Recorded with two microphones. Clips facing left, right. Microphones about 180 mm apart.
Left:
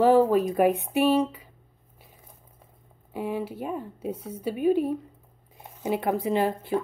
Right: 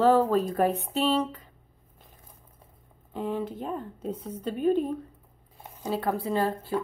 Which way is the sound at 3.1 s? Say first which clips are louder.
Left 1 dB; 10° left (ahead or behind).